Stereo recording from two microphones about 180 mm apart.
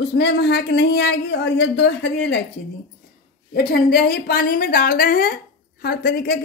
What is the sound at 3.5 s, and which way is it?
A woman's voice, 60° left (ahead or behind).